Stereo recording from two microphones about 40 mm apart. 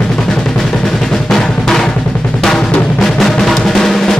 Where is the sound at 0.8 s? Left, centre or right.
Centre.